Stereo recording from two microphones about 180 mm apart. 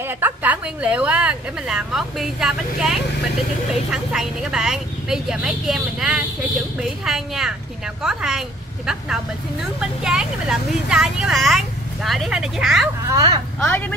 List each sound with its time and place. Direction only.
0.2 s a woman's voice: 10° right (ahead or behind)
13.1 s speech: 20° right (ahead or behind)
13.6 s speech: 10° left (ahead or behind)